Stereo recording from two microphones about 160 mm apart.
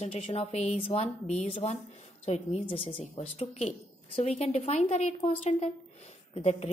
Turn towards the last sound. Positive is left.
turn(degrees=40)  # may be behind; listen again after turning